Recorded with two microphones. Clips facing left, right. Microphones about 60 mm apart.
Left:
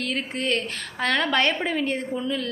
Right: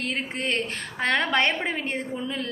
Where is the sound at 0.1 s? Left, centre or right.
Right.